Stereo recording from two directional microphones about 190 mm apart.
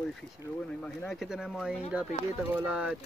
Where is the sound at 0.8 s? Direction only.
Centre (ahead or behind).